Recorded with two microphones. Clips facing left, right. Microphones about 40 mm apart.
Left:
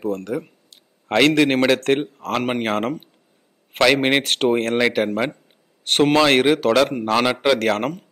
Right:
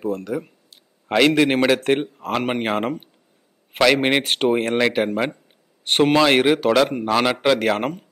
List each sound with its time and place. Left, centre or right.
0.3 s speech: left
1.0 s a man's voice: centre